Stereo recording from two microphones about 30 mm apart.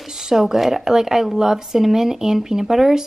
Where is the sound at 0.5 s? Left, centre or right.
Centre.